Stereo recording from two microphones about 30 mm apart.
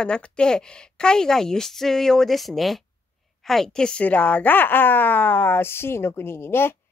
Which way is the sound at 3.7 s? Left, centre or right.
Left.